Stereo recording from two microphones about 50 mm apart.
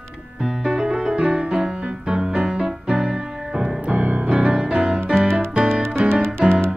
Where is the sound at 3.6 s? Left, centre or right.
Right.